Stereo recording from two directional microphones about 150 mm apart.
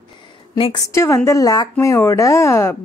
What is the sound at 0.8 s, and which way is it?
A woman's voice, 20° left (ahead or behind).